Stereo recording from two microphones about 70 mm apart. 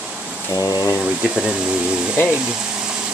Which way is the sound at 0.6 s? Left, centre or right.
Left.